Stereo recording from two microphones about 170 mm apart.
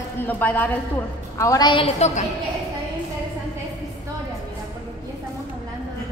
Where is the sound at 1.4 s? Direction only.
20° left (ahead or behind); by 2.2 s 40° left (ahead or behind).